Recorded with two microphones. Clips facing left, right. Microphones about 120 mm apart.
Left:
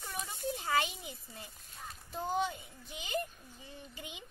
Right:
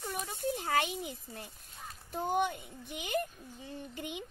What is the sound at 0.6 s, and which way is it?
Speech, 55° right (ahead or behind).